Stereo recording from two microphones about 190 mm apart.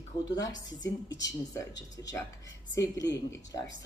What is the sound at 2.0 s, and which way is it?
Speech, 15° left (ahead or behind).